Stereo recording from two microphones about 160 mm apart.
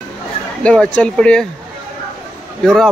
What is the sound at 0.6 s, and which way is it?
Speech, 5° left (ahead or behind).